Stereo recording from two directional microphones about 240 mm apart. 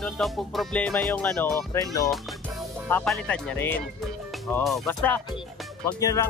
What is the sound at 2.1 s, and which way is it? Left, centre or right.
Speech, centre.